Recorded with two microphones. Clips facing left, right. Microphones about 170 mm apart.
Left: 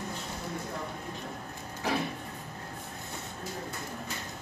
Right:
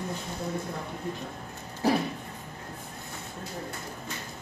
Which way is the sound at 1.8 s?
35° right (ahead or behind).